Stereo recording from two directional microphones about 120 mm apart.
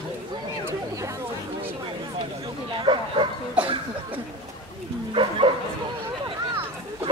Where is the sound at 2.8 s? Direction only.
45° right (ahead or behind).